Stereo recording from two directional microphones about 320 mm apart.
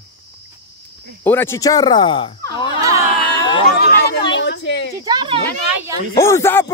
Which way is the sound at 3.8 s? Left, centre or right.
Left.